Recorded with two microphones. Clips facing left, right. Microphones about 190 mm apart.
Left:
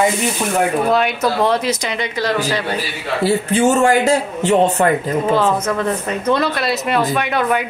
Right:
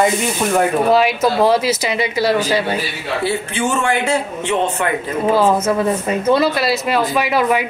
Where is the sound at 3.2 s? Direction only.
40° left (ahead or behind).